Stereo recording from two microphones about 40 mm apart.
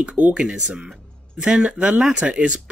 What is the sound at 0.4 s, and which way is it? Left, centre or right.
Speech, right.